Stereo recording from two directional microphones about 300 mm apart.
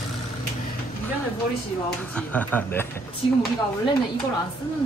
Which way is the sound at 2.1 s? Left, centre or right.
Centre.